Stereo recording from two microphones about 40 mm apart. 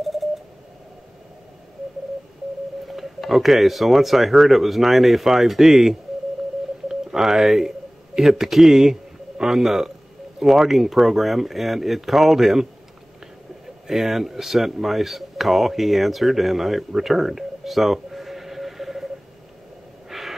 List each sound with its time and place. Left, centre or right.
0.0 s telephone dialing: centre
2.9 s speech: centre
13.8 s speech: centre
20.1 s a sound: centre